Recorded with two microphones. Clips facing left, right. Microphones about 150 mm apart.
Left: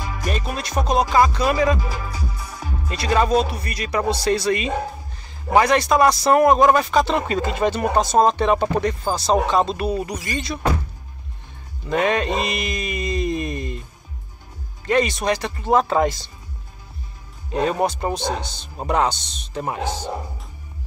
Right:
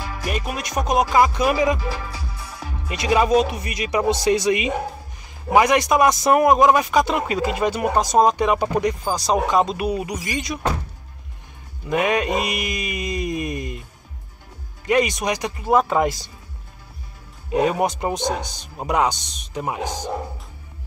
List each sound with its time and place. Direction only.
0.2 s music: 15° right (ahead or behind)
1.1 s a man's voice: 15° right (ahead or behind)
2.9 s a man's voice: 15° right (ahead or behind)
11.9 s a man's voice: 15° right (ahead or behind)
14.9 s a man's voice: 15° right (ahead or behind)
17.5 s a man's voice: 15° right (ahead or behind)